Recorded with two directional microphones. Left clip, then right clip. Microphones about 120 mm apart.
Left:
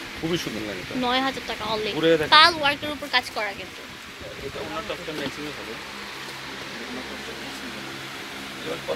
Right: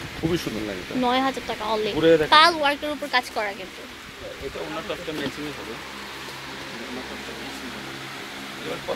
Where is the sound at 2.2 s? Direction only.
35° right (ahead or behind).